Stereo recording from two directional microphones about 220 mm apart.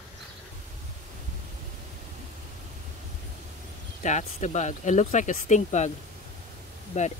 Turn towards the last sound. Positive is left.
turn(degrees=30)  # may be behind; listen again after turning